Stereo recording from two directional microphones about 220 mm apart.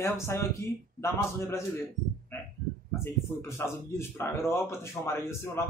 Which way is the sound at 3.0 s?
10° left (ahead or behind).